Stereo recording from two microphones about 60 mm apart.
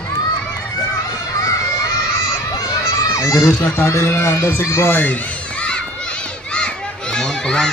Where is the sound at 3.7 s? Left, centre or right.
Left.